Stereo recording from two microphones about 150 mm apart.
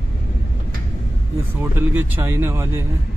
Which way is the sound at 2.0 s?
15° right (ahead or behind).